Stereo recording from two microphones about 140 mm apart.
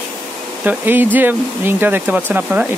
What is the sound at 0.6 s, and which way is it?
Speech, 15° right (ahead or behind).